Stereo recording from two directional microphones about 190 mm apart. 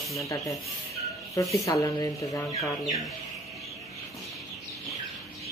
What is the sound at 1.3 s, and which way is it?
Speech, 15° left (ahead or behind).